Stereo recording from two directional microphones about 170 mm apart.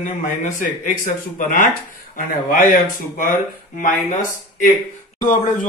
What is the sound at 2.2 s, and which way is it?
Speech, 55° left (ahead or behind).